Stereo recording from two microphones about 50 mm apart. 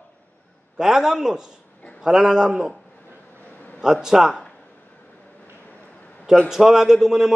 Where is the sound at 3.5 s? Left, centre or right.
Left.